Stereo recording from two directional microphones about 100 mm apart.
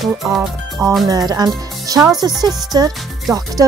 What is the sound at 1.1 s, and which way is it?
Music, 40° right (ahead or behind).